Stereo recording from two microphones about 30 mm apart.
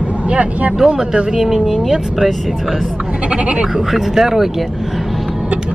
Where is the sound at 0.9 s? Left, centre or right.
Right.